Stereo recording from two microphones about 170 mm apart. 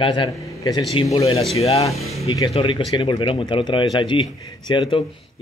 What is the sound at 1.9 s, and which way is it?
Speech, centre (ahead or behind).